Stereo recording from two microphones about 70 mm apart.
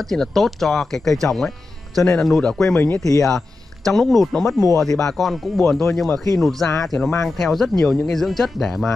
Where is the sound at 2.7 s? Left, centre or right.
Left.